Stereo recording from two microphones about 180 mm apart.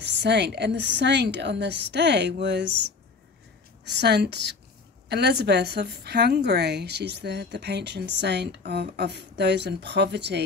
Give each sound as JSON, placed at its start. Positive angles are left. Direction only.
{"t": 0.0, "sound": "a woman's voice", "side_deg": -75}